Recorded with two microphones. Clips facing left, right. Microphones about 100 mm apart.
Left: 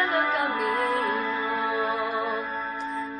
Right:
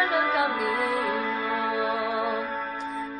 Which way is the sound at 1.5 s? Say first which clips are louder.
Right 1 dB; 30° left (ahead or behind).